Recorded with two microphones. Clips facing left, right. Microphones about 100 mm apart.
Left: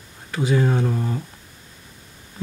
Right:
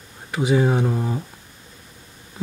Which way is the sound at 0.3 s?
15° right (ahead or behind).